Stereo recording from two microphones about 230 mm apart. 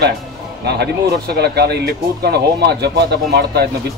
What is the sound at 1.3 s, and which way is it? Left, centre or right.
Speech, right.